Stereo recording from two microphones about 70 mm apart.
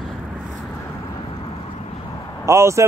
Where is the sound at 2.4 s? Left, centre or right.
Right.